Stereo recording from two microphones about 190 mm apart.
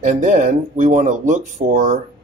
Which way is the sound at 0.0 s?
40° right (ahead or behind).